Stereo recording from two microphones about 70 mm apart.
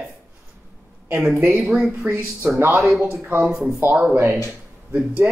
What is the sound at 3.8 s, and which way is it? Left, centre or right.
Speech, right.